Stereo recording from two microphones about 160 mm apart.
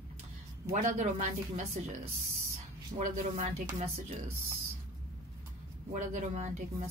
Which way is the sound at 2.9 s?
45° right (ahead or behind).